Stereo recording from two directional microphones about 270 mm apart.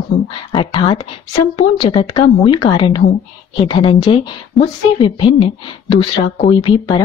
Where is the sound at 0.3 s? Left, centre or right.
Centre.